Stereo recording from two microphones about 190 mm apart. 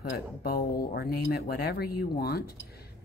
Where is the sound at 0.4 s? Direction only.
50° left (ahead or behind).